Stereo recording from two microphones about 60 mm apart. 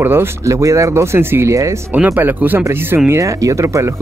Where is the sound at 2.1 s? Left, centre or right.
Right.